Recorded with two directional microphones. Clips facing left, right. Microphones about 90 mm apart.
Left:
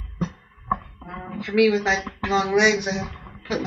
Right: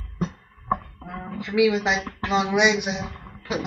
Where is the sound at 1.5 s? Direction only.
5° right (ahead or behind).